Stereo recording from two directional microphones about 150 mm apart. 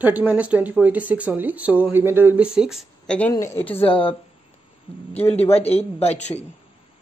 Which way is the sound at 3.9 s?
35° left (ahead or behind).